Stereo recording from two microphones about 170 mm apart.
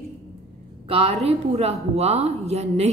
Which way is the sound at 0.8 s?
35° right (ahead or behind).